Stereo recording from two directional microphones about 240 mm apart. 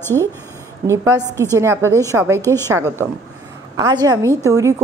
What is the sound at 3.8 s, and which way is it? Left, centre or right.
Speech, centre.